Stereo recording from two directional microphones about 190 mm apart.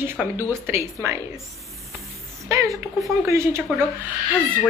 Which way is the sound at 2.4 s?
15° right (ahead or behind).